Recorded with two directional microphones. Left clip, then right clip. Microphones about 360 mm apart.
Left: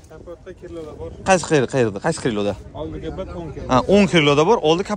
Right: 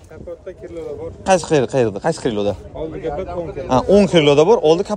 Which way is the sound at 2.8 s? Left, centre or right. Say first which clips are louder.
Right 5 dB; centre.